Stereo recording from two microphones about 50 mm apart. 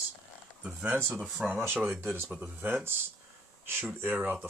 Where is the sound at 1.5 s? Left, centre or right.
Right.